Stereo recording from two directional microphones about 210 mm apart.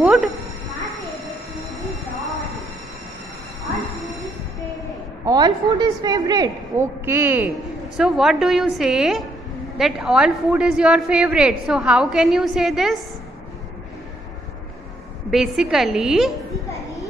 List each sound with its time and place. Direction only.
0.0 s cat: centre (ahead or behind)
5.2 s a woman's voice: 20° right (ahead or behind); by 13.0 s centre (ahead or behind)
15.3 s a woman's voice: centre (ahead or behind)